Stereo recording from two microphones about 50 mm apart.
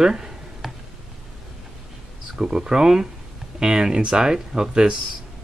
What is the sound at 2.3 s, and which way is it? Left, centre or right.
Speech, centre.